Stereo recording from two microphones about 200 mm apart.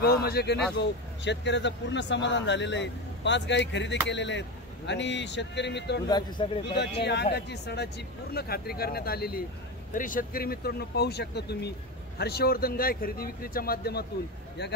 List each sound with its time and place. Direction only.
0.0 s speech: 50° left (ahead or behind)
6.0 s speech: 20° left (ahead or behind)
6.7 s speech: 55° left (ahead or behind)